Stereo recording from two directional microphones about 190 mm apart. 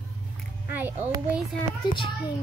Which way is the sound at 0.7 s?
10° right (ahead or behind).